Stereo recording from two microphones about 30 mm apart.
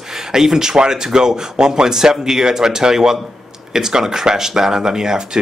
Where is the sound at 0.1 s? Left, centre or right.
Centre.